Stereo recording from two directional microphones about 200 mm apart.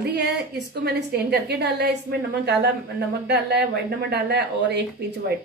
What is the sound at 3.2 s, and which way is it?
A woman's voice, 55° right (ahead or behind).